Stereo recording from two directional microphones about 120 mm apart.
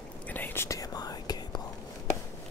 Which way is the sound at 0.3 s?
15° left (ahead or behind).